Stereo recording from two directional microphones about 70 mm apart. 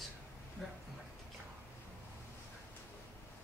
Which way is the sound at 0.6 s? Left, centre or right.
Centre.